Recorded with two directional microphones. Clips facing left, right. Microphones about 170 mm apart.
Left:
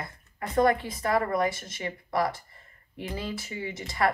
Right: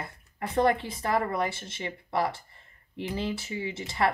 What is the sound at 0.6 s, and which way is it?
Speech, 25° right (ahead or behind).